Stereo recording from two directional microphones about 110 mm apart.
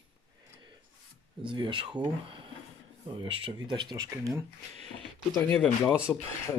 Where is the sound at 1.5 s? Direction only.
50° right (ahead or behind).